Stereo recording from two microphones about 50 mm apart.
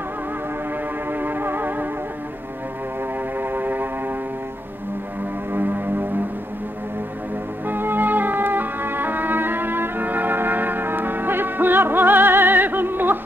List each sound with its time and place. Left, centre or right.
1.1 s music: right
3.3 s music: right
5.5 s music: right
7.6 s music: right